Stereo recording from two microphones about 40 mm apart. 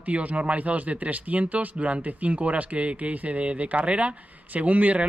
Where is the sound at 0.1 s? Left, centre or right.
Right.